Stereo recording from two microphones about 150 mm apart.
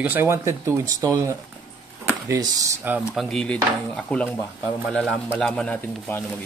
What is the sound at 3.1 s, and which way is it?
Speech, centre (ahead or behind).